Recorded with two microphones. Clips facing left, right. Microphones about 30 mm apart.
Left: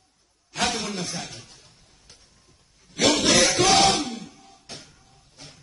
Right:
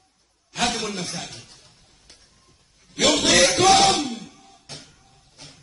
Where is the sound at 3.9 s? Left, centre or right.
Right.